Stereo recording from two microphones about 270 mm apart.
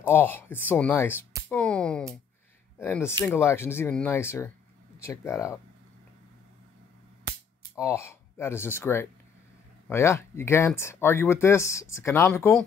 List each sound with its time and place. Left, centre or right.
0.0 s speech: centre
7.7 s speech: centre